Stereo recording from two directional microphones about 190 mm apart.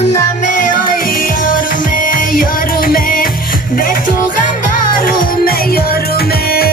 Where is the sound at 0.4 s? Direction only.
45° left (ahead or behind).